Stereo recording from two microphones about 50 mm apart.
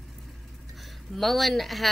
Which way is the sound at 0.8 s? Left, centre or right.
Centre.